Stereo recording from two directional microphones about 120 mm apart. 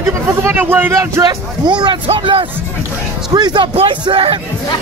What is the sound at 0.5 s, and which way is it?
A man's voice, 15° right (ahead or behind).